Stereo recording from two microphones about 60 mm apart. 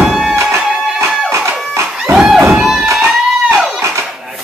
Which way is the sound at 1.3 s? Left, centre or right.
Right.